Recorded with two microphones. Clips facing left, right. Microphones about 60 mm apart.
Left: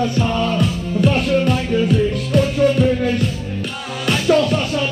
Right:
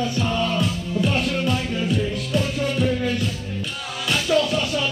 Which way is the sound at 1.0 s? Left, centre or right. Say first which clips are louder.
Left 7 dB; left.